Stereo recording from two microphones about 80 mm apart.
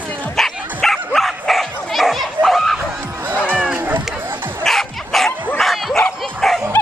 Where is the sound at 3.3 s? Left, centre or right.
Centre.